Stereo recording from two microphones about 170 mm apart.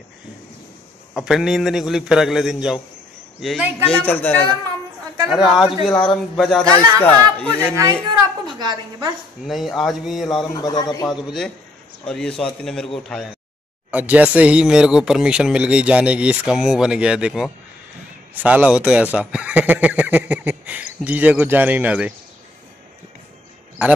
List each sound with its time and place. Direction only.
1.1 s speech: 5° right (ahead or behind)
3.8 s speech: 10° left (ahead or behind)
5.3 s speech: centre (ahead or behind)
7.6 s a woman's voice: 20° right (ahead or behind)
9.4 s speech: centre (ahead or behind)
10.3 s speech: 25° left (ahead or behind)
11.1 s speech: centre (ahead or behind)